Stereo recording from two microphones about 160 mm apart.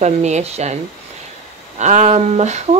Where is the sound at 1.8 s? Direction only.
45° right (ahead or behind).